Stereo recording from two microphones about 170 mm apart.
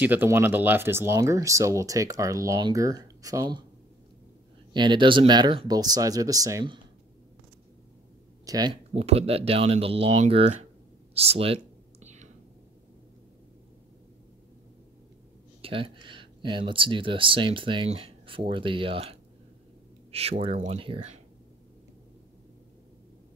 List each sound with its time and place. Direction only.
0.0 s speech: 10° right (ahead or behind)
4.7 s speech: 30° right (ahead or behind)
8.5 s speech: 25° right (ahead or behind)
8.9 s speech: 35° right (ahead or behind)
11.1 s a sound: 35° right (ahead or behind)
15.6 s speech: 30° right (ahead or behind)